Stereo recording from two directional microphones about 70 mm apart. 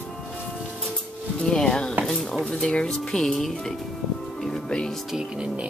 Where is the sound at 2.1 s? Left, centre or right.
Centre.